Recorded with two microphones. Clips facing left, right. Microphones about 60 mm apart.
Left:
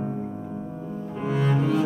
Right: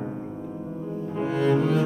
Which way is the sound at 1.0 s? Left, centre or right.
Centre.